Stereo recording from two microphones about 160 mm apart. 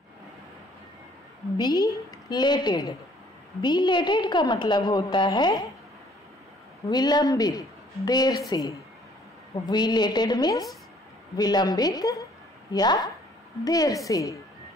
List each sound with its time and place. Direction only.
1.6 s a woman's voice: 25° left (ahead or behind)
6.9 s a woman's voice: 25° left (ahead or behind)